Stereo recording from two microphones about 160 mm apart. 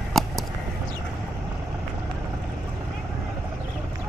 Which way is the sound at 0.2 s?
Centre (ahead or behind).